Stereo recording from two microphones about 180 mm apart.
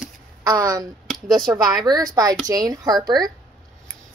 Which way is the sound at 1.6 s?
20° right (ahead or behind).